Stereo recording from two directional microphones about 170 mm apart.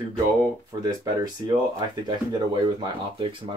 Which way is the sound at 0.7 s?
20° right (ahead or behind).